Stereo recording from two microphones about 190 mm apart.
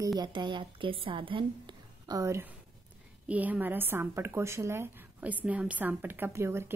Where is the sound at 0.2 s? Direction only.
25° right (ahead or behind).